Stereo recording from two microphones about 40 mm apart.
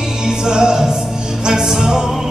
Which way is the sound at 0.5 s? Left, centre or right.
Centre.